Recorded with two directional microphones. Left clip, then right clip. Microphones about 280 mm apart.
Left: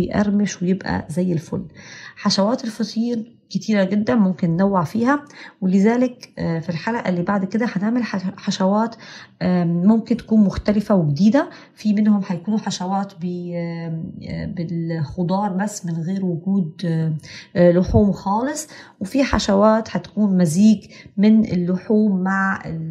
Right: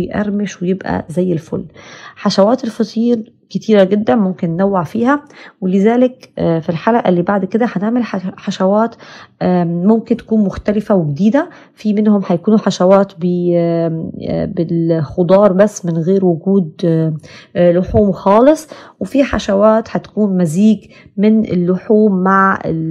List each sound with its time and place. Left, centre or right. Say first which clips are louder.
0.0 s speech: right 2 dB; centre